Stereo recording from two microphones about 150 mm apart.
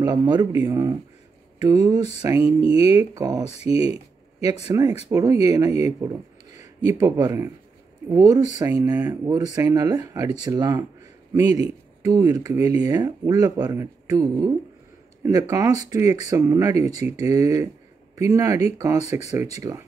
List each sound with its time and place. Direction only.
0.0 s speech: 25° right (ahead or behind)
4.7 s speech: 25° right (ahead or behind)